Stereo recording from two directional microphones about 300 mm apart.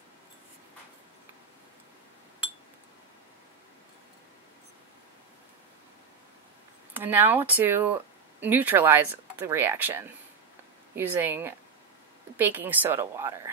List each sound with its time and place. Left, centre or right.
6.9 s a woman's voice: centre